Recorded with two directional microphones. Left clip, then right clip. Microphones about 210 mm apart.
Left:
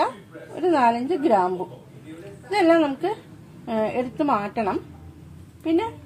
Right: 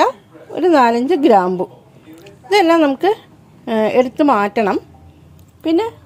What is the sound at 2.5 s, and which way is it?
A woman's voice, 50° right (ahead or behind).